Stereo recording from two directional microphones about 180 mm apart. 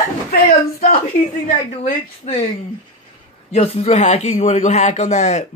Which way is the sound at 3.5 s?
35° left (ahead or behind).